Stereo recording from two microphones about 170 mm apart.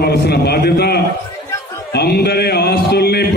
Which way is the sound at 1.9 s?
70° left (ahead or behind).